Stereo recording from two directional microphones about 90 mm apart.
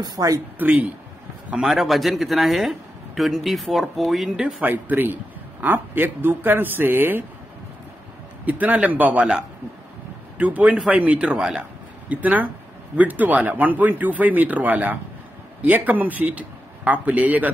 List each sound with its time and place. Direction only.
0.0 s speech: 45° right (ahead or behind)
0.6 s a man's voice: 20° right (ahead or behind)
1.5 s speech: 5° right (ahead or behind)
4.6 s a man's voice: 20° right (ahead or behind)
8.5 s a man's voice: 15° right (ahead or behind)